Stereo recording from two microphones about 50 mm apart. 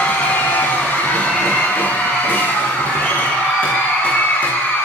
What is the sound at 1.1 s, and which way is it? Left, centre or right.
Music, left.